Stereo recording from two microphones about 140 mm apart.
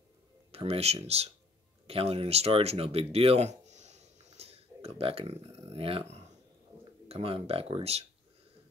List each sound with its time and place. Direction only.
0.5 s speech: 45° right (ahead or behind)